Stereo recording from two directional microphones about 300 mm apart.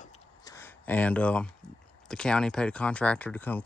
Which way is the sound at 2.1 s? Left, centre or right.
Centre.